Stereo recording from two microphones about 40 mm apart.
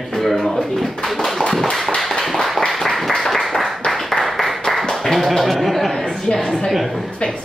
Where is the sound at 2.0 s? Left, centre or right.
Centre.